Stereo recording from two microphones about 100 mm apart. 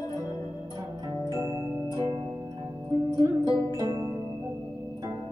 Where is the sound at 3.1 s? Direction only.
45° right (ahead or behind).